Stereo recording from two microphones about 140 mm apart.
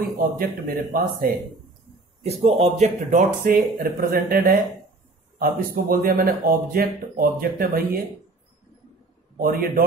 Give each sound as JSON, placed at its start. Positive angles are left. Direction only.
{"t": 0.0, "sound": "speech", "side_deg": -90}
{"t": 2.2, "sound": "speech", "side_deg": -50}
{"t": 9.4, "sound": "speech", "side_deg": -90}